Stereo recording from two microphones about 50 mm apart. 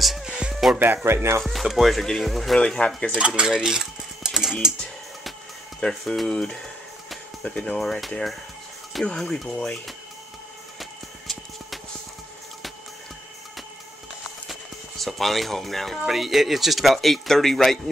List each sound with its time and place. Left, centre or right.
0.2 s a sound: centre
1.0 s speech: right
1.4 s speech: centre
2.6 s speech: centre
3.2 s cutlery: centre
5.8 s speech: centre
7.8 s speech: centre
10.8 s music: centre
14.5 s speech: centre